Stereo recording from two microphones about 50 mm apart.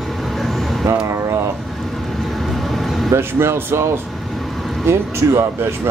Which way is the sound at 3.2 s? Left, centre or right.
Right.